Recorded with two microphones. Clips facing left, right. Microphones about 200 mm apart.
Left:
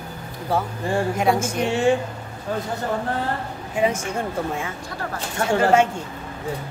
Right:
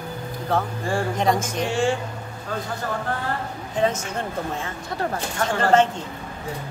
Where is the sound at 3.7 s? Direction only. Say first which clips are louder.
Left 1 dB; 10° left (ahead or behind).